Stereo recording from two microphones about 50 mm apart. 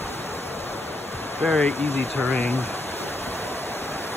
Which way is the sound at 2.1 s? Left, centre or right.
Left.